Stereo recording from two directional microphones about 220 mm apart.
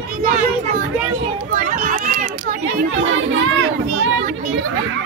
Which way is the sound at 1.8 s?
35° right (ahead or behind).